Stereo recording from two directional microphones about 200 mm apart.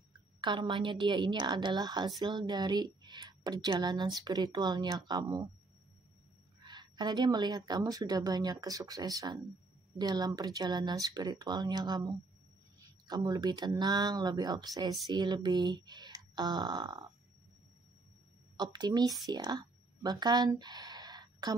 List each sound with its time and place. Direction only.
0.4 s a woman's voice: 25° right (ahead or behind)
6.6 s a woman's voice: 20° right (ahead or behind)
18.6 s a woman's voice: 20° right (ahead or behind)